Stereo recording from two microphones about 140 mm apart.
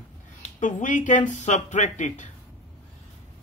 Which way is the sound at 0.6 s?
65° left (ahead or behind).